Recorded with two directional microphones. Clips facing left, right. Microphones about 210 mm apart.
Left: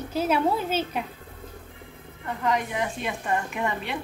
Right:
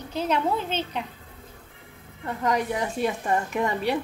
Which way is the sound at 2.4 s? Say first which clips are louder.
Right 1 dB; 40° right (ahead or behind).